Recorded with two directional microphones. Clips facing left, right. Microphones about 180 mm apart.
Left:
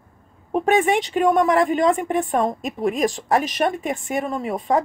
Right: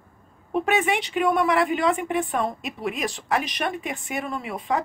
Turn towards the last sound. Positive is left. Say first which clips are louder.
# left 5 dB
turn(degrees=45)  # may be behind; listen again after turning